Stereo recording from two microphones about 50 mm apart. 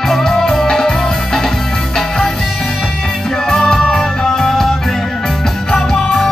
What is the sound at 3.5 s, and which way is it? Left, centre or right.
Music, centre.